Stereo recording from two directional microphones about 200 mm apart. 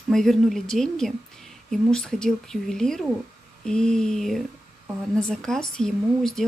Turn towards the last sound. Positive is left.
turn(degrees=5)  # may be behind; listen again after turning